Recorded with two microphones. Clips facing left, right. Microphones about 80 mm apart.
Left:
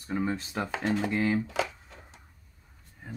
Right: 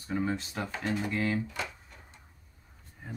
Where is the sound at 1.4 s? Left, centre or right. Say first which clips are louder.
Left 6 dB; left.